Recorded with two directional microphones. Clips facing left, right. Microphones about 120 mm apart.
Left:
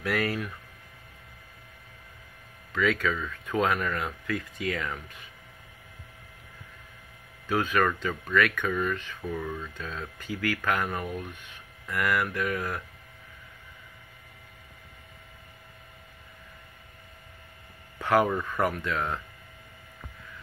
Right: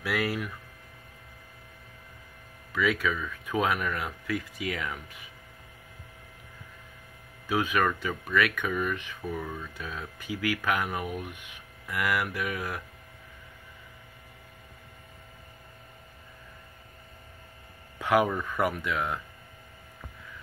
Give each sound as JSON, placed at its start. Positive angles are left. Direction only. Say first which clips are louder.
{"t": 0.0, "sound": "speech", "louder": "left 1 dB", "side_deg": -10}
{"t": 2.7, "sound": "speech", "louder": "left 1 dB", "side_deg": -10}
{"t": 7.4, "sound": "speech", "louder": "left 1 dB", "side_deg": -10}
{"t": 17.9, "sound": "a sound", "louder": "left 1 dB", "side_deg": -15}
{"t": 18.6, "sound": "speech", "louder": "right 1 dB", "side_deg": -10}